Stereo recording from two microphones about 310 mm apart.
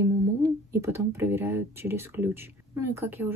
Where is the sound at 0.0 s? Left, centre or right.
Centre.